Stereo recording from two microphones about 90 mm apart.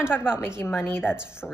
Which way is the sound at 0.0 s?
25° left (ahead or behind).